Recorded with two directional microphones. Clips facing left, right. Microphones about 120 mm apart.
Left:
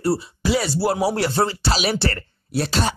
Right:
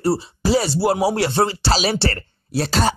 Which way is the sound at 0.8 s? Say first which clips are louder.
Right 2 dB; 20° right (ahead or behind).